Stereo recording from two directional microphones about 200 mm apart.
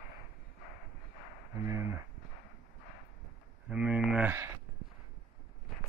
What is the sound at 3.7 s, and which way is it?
Speech, 5° right (ahead or behind).